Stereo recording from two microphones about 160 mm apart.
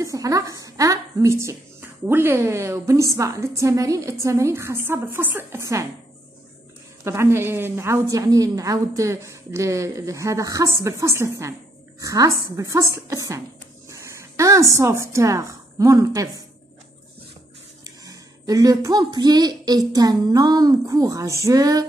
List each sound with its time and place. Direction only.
0.0 s speech: 20° right (ahead or behind)
7.1 s a woman's voice: 15° right (ahead or behind)
17.8 s a woman's voice: 20° right (ahead or behind)